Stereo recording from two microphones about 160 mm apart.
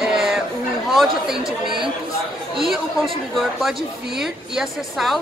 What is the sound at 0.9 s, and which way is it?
Speech, 5° right (ahead or behind).